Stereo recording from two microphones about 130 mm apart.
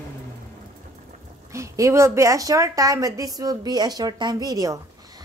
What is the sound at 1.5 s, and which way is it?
A woman's voice, 25° right (ahead or behind).